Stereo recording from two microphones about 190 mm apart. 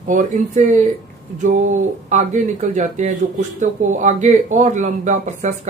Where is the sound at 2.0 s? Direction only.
40° right (ahead or behind).